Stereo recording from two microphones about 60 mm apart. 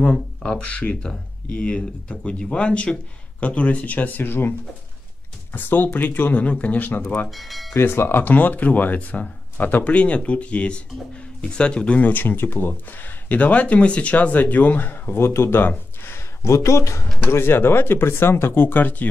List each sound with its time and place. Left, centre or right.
0.0 s speech: centre
7.2 s speech: centre
7.7 s speech: left
8.2 s speech: left
12.0 s speech: left
16.4 s speech: left
17.2 s speech: left